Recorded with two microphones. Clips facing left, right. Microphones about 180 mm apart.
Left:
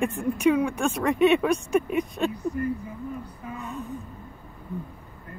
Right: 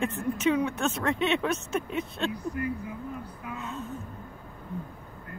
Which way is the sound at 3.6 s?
15° left (ahead or behind).